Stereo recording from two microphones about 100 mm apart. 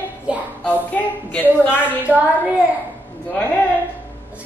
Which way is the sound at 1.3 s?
20° left (ahead or behind).